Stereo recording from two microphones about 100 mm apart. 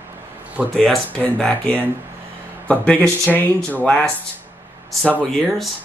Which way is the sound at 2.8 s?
10° left (ahead or behind).